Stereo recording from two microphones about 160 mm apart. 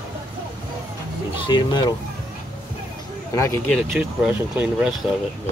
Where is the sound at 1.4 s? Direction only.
30° left (ahead or behind).